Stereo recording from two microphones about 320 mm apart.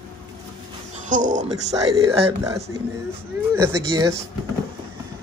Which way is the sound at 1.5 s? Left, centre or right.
Centre.